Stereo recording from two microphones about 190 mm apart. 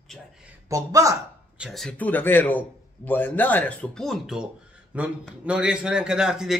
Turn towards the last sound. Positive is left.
turn(degrees=-5)  # may be behind; listen again after turning